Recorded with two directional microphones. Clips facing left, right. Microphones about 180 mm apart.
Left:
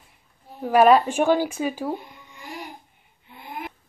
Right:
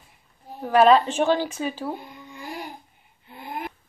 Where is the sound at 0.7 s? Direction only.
10° left (ahead or behind).